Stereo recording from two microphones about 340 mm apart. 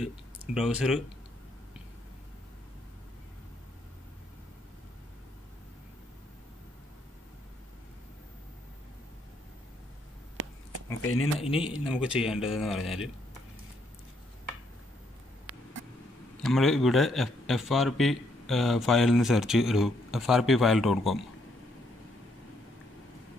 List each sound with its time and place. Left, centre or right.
0.6 s a man's voice: centre
10.4 s a sound: right
11.0 s speech: left
11.4 s speech: centre
11.7 s a man's voice: centre
16.4 s a man's voice: centre